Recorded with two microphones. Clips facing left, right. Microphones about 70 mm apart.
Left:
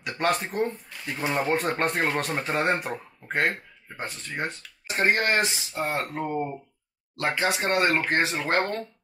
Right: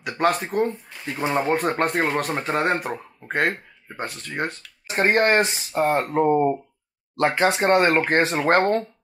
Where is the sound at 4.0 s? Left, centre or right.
Right.